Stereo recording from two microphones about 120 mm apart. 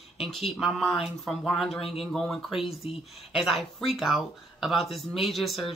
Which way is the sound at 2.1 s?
Centre (ahead or behind).